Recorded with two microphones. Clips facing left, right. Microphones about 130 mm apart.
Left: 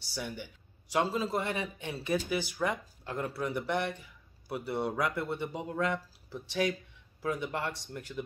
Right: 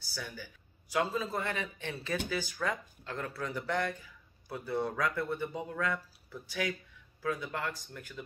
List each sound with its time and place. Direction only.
0.1 s a man's voice: 20° left (ahead or behind)